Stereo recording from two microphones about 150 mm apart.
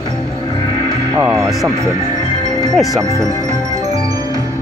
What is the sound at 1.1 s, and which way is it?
Speech, 20° right (ahead or behind).